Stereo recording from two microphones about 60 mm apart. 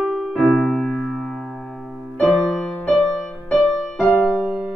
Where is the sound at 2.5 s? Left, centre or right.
Centre.